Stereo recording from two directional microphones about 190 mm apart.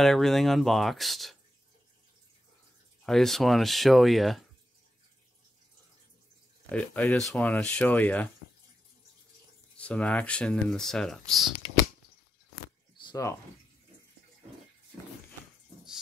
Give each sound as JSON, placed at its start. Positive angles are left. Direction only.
{"t": 0.0, "sound": "speech", "side_deg": 0}
{"t": 3.0, "sound": "speech", "side_deg": 0}
{"t": 6.7, "sound": "speech", "side_deg": 5}
{"t": 9.8, "sound": "speech", "side_deg": 5}
{"t": 12.9, "sound": "a sound", "side_deg": 20}